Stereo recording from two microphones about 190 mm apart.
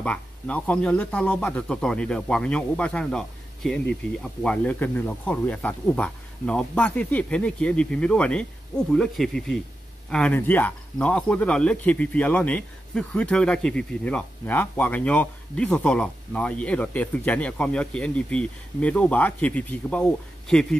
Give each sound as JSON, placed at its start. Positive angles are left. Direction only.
{"t": 0.0, "sound": "speech", "side_deg": 5}